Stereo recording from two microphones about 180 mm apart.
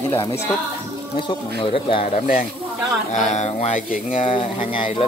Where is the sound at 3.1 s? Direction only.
40° left (ahead or behind).